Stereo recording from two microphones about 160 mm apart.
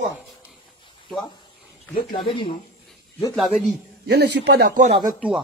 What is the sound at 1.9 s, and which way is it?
Speech, 30° left (ahead or behind).